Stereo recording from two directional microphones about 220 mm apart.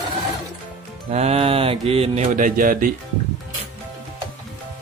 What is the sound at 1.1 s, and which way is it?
Speech, 30° right (ahead or behind).